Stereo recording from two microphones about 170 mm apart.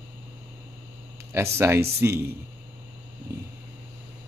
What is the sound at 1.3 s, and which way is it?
Speech, 15° right (ahead or behind).